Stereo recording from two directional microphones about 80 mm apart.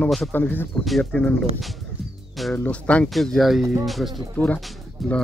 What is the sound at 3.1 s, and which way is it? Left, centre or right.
Speech, centre.